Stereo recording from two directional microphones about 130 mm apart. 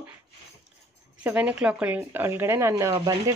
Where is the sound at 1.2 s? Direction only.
10° right (ahead or behind).